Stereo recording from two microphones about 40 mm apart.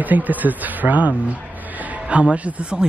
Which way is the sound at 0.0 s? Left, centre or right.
Right.